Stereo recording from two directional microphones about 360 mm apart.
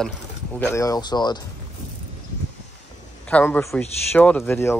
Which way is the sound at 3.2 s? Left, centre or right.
Centre.